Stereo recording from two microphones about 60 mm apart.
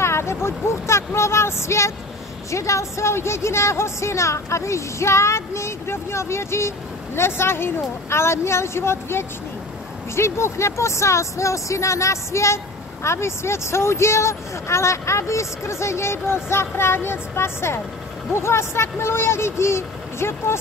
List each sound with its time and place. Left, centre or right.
0.0 s speech: left